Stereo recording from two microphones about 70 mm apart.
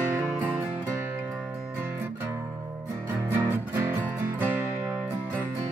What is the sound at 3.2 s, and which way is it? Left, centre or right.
Music, right.